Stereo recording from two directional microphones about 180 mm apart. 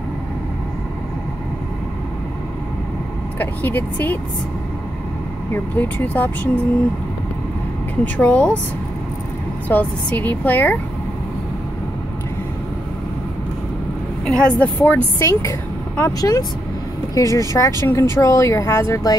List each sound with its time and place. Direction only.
3.3 s speech: 10° left (ahead or behind)
5.5 s speech: 10° left (ahead or behind)
8.0 s speech: 5° left (ahead or behind)
9.7 s speech: 10° left (ahead or behind)
14.2 s speech: 5° left (ahead or behind)